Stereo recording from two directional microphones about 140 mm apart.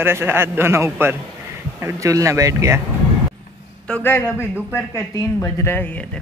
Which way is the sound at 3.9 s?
15° left (ahead or behind).